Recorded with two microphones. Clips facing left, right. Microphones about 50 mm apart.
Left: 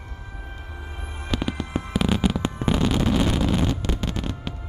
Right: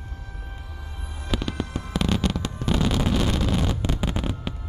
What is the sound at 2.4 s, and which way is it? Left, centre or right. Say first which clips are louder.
Fireworks: left 3 dB; left.